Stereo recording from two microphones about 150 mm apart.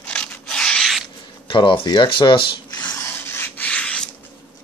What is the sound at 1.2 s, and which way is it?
Speech, 35° left (ahead or behind).